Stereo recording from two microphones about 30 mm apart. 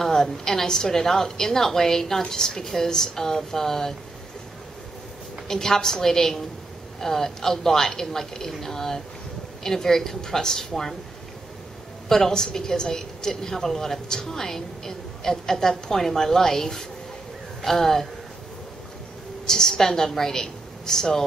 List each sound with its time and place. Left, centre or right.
0.0 s a woman's voice: centre
5.5 s a woman's voice: centre
12.1 s a woman's voice: centre
19.4 s a woman's voice: centre